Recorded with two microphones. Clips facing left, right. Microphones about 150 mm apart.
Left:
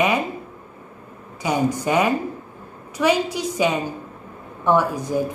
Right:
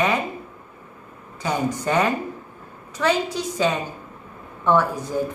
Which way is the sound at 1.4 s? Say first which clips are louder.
Left 2 dB; 10° left (ahead or behind).